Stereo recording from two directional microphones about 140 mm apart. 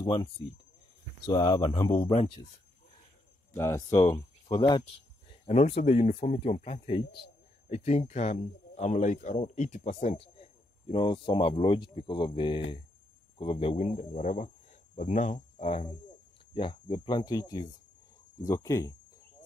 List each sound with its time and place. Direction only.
1.2 s speech: 30° left (ahead or behind)
3.5 s speech: 20° left (ahead or behind); by 15.7 s 60° left (ahead or behind)
16.5 s speech: 35° left (ahead or behind)